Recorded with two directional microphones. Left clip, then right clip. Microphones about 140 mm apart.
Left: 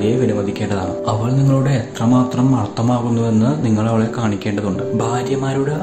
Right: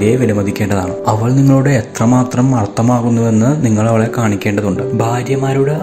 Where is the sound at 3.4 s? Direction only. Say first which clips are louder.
Right 4 dB; 30° right (ahead or behind).